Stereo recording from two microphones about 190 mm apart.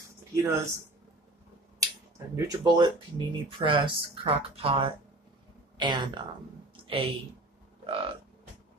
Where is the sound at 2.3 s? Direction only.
20° right (ahead or behind).